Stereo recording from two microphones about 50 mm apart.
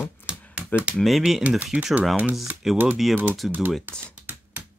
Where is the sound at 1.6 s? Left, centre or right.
Centre.